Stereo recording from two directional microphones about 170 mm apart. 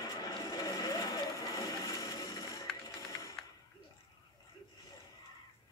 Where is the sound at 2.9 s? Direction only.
20° left (ahead or behind).